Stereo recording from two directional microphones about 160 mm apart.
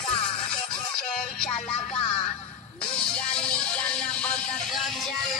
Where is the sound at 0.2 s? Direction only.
35° left (ahead or behind).